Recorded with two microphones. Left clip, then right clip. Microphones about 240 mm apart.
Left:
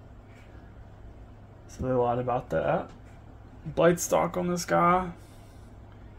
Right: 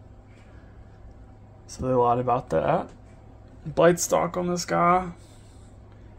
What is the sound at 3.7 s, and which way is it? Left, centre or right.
Speech, centre.